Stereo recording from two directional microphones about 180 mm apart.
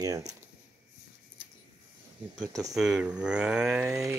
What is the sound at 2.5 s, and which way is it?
Speech, 20° right (ahead or behind).